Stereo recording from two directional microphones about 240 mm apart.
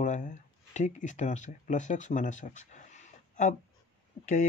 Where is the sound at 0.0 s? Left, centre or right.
Left.